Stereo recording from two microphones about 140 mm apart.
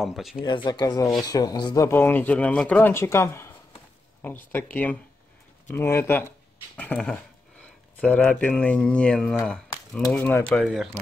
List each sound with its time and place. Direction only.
0.0 s speech: centre (ahead or behind)
0.4 s speech: 35° left (ahead or behind)
1.9 s speech: 15° left (ahead or behind)
10.5 s speech: centre (ahead or behind)